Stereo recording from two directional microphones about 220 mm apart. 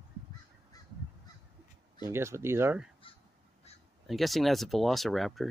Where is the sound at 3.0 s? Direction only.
25° left (ahead or behind).